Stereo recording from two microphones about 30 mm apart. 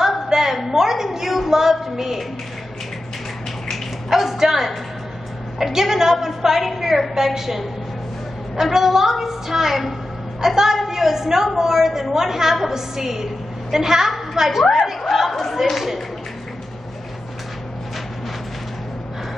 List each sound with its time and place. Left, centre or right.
0.3 s a sound: centre
3.7 s bathtub: centre
5.6 s a woman's voice: centre
8.7 s a woman's voice: centre